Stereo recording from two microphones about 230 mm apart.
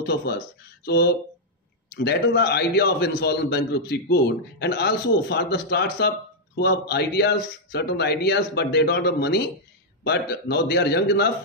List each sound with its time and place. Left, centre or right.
0.0 s a man's voice: left